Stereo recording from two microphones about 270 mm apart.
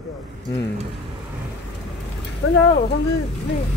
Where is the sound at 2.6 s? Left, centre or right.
Centre.